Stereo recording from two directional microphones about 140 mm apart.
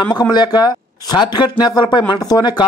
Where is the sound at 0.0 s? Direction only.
30° left (ahead or behind).